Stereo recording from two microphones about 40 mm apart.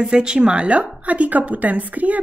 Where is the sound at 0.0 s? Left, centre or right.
Right.